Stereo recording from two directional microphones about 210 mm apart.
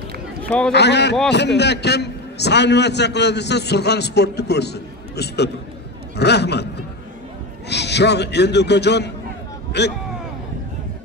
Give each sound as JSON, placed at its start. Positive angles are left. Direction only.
{"t": 0.4, "sound": "speech", "side_deg": 5}
{"t": 0.7, "sound": "a man's voice", "side_deg": 55}
{"t": 7.7, "sound": "a man's voice", "side_deg": 55}